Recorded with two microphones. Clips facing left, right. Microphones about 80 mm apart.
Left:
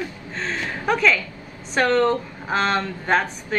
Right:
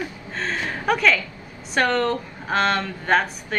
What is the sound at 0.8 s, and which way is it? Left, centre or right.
A woman's voice, centre.